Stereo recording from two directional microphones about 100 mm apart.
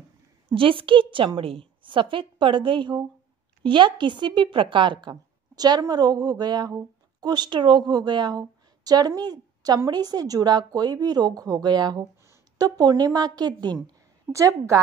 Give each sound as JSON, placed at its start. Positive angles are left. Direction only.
{"t": 0.6, "sound": "a woman's voice", "side_deg": -60}
{"t": 5.1, "sound": "a woman's voice", "side_deg": -40}
{"t": 12.0, "sound": "a woman's voice", "side_deg": -35}
{"t": 14.3, "sound": "speech", "side_deg": -30}